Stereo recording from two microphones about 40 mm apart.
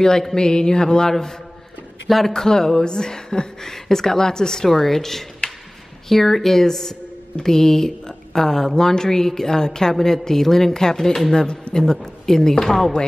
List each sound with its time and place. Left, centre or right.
0.0 s speech: centre
5.4 s a sound: left
6.0 s speech: centre